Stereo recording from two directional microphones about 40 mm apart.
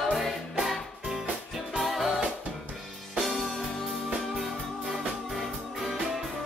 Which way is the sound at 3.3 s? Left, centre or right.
Centre.